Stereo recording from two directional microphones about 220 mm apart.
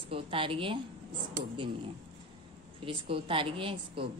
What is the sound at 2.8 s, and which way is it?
A woman's voice, 25° right (ahead or behind).